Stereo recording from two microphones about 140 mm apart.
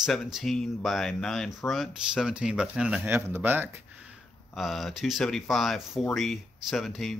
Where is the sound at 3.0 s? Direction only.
15° right (ahead or behind).